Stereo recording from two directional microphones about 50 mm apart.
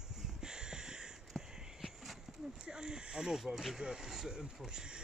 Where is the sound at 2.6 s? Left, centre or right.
Centre.